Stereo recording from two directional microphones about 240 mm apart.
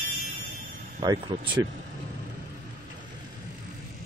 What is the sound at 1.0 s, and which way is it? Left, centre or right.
Speech, centre.